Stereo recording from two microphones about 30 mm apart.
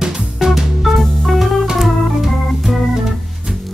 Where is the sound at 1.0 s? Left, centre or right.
Centre.